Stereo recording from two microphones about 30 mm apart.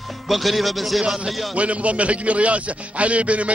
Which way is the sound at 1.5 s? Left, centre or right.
Right.